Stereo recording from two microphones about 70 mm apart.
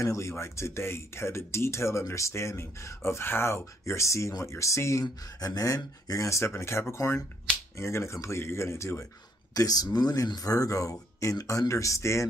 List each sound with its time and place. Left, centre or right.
0.0 s speech: left
5.0 s speech: left
9.5 s speech: left